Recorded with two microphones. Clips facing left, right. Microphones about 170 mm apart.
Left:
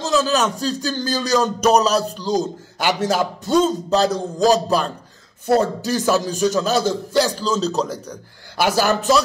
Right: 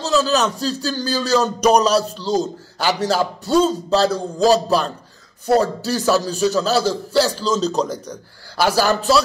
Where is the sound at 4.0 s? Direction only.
15° left (ahead or behind).